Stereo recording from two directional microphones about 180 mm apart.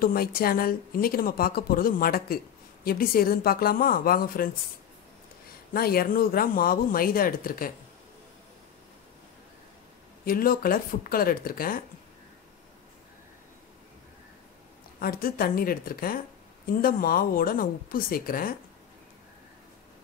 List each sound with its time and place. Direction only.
0.0 s speech: 55° left (ahead or behind)
5.7 s speech: 55° left (ahead or behind)
10.2 s speech: 55° left (ahead or behind)
15.0 s speech: 55° left (ahead or behind)